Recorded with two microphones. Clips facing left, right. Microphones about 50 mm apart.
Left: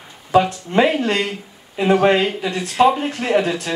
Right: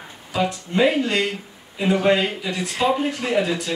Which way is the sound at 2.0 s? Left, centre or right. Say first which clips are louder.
Left 3 dB; left.